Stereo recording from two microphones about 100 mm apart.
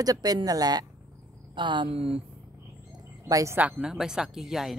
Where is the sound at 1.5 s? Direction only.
50° right (ahead or behind).